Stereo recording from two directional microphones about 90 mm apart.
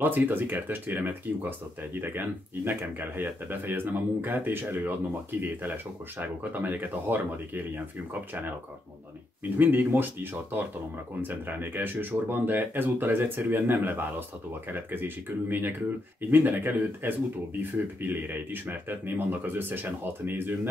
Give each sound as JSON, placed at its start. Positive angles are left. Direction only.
{"t": 0.0, "sound": "speech", "side_deg": -20}